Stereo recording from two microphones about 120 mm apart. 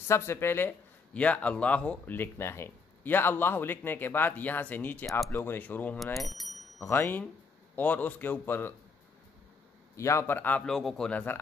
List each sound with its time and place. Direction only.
0.1 s speech: 20° left (ahead or behind)
6.1 s a man's voice: centre (ahead or behind)
6.8 s speech: 20° left (ahead or behind)
9.9 s speech: 25° left (ahead or behind)
10.6 s a man's voice: centre (ahead or behind)